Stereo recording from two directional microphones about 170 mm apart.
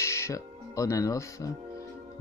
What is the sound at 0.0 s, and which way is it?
Speech, 15° left (ahead or behind).